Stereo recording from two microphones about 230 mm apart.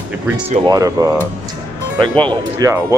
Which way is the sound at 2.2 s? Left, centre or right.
Centre.